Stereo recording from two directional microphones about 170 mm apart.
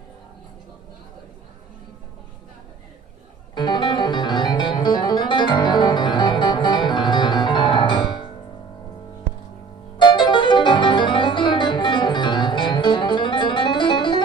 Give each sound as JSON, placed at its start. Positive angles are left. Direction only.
{"t": 3.5, "sound": "music", "side_deg": 25}
{"t": 9.9, "sound": "music", "side_deg": 30}